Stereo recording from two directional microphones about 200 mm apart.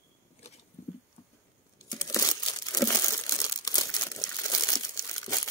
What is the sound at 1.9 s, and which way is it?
Crumpling, 15° left (ahead or behind).